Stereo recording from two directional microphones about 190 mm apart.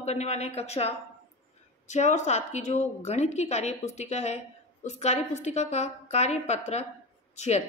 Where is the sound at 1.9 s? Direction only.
40° left (ahead or behind).